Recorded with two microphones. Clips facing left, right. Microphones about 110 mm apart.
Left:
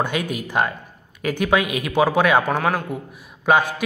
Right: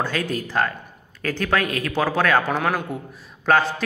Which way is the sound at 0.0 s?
15° left (ahead or behind).